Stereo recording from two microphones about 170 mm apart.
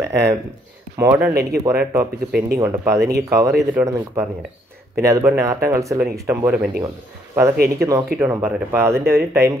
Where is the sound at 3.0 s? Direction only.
75° right (ahead or behind).